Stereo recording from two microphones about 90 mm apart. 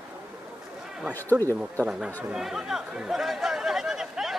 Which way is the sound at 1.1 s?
20° left (ahead or behind).